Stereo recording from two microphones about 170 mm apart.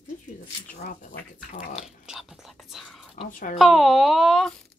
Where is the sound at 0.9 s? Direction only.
45° left (ahead or behind).